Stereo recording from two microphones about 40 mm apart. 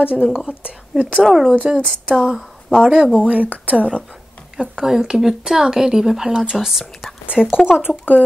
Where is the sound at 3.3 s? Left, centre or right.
Right.